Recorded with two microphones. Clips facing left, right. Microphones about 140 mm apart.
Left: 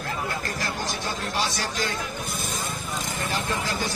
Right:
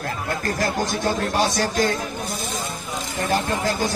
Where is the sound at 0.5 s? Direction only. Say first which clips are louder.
Right 7 dB; 50° right (ahead or behind).